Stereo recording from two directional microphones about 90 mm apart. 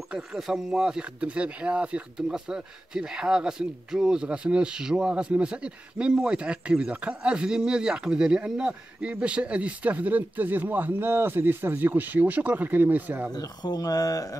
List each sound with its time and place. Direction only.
0.1 s speech: 5° right (ahead or behind)
13.3 s speech: 50° left (ahead or behind)